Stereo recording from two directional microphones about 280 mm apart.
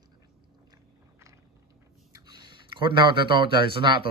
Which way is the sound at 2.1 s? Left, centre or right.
Centre.